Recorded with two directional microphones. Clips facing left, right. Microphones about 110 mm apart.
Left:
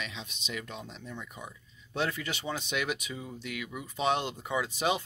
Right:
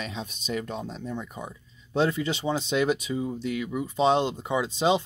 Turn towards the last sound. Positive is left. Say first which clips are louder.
# right 6 dB
turn(degrees=-25)  # may be behind; listen again after turning